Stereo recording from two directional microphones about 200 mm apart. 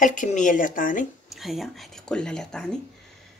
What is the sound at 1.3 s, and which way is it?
Speech, centre (ahead or behind).